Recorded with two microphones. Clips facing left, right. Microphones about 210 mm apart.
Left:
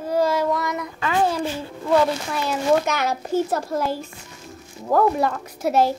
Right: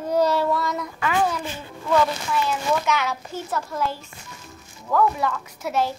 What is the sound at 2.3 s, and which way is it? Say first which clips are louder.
A woman's voice: left 3 dB; 45° left (ahead or behind).